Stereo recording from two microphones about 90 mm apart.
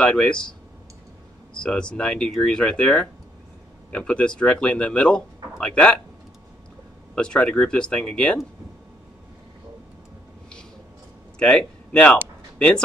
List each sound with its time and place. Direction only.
0.0 s speech: 10° left (ahead or behind)
1.6 s speech: 10° left (ahead or behind)
7.2 s speech: 10° left (ahead or behind)
11.3 s speech: 10° left (ahead or behind)